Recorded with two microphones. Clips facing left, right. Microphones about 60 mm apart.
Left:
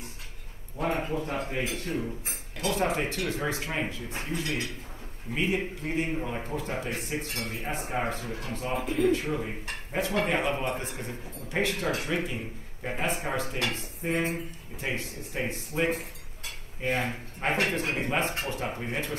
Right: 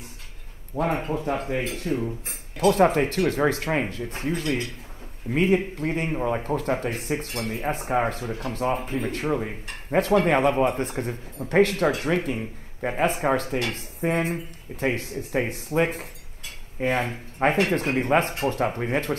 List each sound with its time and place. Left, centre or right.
0.8 s speech: right
1.1 s speech: right
2.6 s speech: right
7.8 s speech: right